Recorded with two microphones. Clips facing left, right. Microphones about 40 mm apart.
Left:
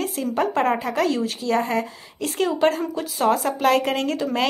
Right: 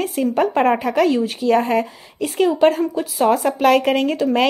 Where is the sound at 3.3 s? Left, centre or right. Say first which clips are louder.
Right 4 dB; right.